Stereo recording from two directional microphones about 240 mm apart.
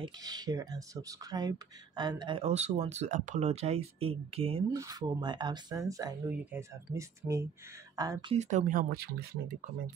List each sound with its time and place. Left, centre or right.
0.0 s speech: centre
8.4 s speech: right